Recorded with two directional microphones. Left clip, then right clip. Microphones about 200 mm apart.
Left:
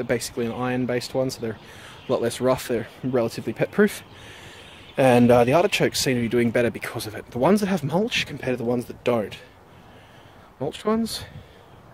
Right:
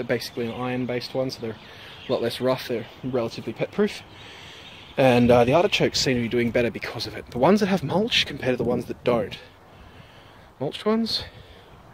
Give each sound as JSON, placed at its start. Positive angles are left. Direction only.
{"t": 0.0, "sound": "speech", "side_deg": 10}
{"t": 3.1, "sound": "speech", "side_deg": 30}
{"t": 4.9, "sound": "speech", "side_deg": 15}
{"t": 10.6, "sound": "speech", "side_deg": 5}